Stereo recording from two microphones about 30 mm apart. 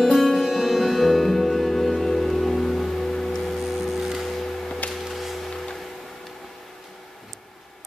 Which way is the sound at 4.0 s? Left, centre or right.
Centre.